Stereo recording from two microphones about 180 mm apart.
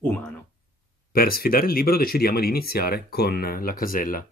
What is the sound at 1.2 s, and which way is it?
Speech, 55° left (ahead or behind).